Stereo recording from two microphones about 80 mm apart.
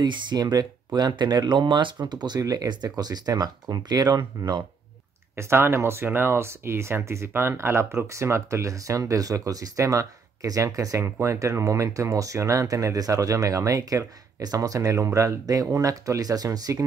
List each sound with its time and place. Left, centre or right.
0.0 s speech: right
5.3 s speech: right